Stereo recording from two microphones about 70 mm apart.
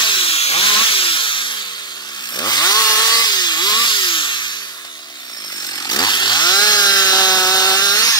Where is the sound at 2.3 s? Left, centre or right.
Left.